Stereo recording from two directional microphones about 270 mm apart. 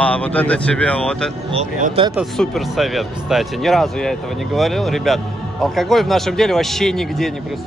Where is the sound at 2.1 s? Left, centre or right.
Centre.